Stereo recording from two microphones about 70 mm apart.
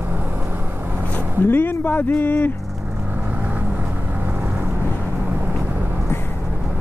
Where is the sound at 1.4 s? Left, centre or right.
Left.